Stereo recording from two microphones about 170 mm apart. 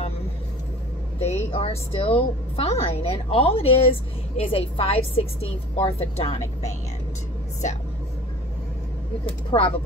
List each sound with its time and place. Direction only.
1.2 s a woman's voice: 35° left (ahead or behind)
9.2 s a woman's voice: 30° left (ahead or behind)